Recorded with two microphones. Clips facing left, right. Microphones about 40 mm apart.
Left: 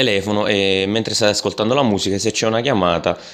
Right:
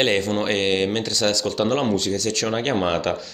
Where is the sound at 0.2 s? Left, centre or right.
Left.